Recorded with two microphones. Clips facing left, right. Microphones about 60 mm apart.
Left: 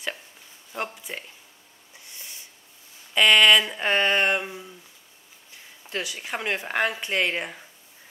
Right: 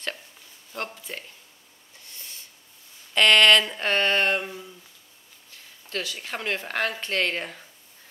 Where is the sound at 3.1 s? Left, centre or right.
Centre.